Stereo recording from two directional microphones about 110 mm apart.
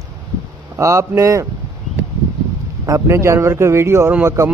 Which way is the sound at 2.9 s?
25° right (ahead or behind).